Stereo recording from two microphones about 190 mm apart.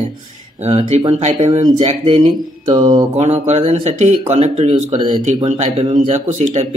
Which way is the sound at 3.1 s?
35° right (ahead or behind).